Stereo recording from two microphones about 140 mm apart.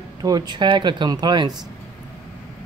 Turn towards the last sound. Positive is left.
turn(degrees=-30)  # may be behind; listen again after turning